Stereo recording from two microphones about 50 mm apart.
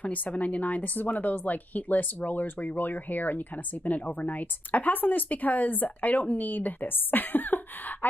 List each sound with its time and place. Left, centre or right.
0.0 s speech: left